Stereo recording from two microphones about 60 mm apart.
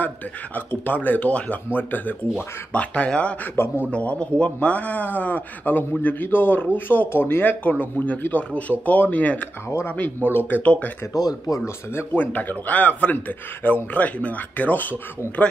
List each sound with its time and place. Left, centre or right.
0.6 s speech: left
2.7 s speech: left
3.5 s speech: left
3.9 s speech: left
11.1 s speech: left
11.6 s speech: left
12.3 s speech: left